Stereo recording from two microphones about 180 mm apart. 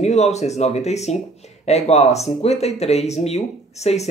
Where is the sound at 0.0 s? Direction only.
40° left (ahead or behind).